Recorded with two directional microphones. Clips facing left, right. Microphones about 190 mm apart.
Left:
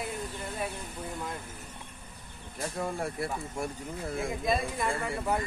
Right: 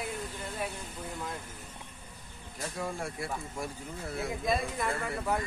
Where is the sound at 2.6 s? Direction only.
45° left (ahead or behind).